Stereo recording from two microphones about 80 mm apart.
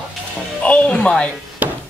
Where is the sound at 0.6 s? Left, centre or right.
Centre.